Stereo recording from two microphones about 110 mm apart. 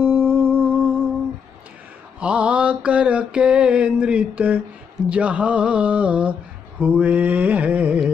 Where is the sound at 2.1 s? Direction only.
10° right (ahead or behind).